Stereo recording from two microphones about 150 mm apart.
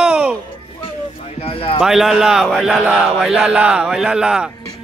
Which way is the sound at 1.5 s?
40° left (ahead or behind).